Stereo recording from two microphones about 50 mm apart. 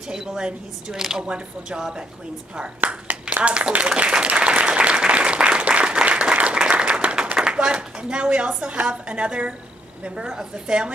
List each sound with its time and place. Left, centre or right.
0.1 s speech: centre
2.8 s speech: right
3.4 s applause: right
7.3 s a woman's voice: centre